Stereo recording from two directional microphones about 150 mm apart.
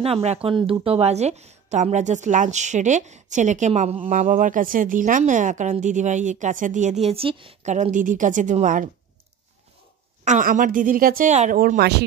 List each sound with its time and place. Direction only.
0.0 s a woman's voice: 45° right (ahead or behind)
7.1 s speech: 40° right (ahead or behind)
7.6 s a woman's voice: 50° right (ahead or behind)
10.2 s a woman's voice: 60° right (ahead or behind)
11.5 s speech: 75° right (ahead or behind)